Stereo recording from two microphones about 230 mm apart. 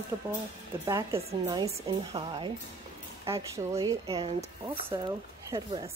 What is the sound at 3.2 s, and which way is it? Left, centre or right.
Speech, centre.